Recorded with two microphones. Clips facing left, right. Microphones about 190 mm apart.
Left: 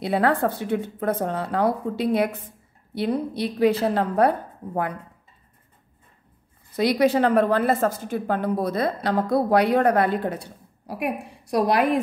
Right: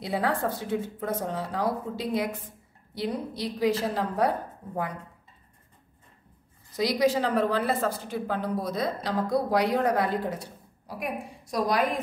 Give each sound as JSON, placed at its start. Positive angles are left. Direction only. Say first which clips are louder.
{"t": 0.0, "sound": "a woman's voice", "louder": "left 6 dB", "side_deg": 65}
{"t": 6.7, "sound": "a woman's voice", "louder": "left 4 dB", "side_deg": 60}